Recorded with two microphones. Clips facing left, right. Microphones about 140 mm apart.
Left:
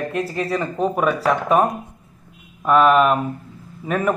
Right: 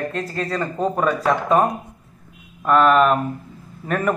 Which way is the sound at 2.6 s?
5° left (ahead or behind).